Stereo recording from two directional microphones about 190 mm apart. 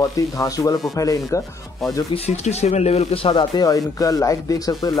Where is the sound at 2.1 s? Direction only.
35° left (ahead or behind).